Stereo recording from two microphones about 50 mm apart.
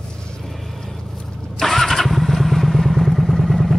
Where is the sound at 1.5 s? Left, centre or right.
Centre.